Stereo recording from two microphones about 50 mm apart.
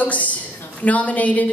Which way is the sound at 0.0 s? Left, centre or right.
Left.